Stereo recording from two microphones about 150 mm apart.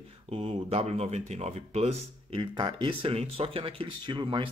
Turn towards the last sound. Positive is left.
turn(degrees=-35)  # may be behind; listen again after turning